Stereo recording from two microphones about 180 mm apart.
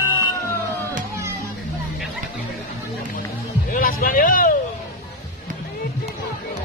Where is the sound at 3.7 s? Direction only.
50° left (ahead or behind).